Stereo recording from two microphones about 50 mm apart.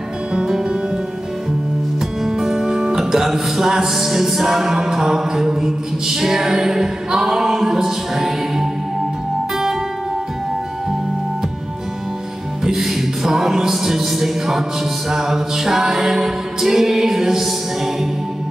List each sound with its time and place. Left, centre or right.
0.3 s music: centre
2.2 s music: centre
12.6 s music: centre